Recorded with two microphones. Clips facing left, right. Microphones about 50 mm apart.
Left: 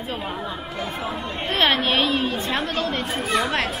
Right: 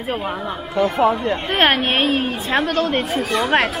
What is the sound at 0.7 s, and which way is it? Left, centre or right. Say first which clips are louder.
Speech: right 14 dB; right.